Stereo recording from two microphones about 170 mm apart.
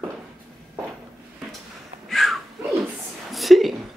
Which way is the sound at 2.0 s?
Centre (ahead or behind).